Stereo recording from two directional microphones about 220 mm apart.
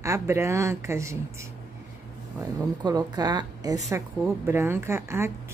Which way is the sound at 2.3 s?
15° right (ahead or behind).